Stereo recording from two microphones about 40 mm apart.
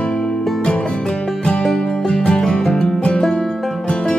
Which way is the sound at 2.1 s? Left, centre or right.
Left.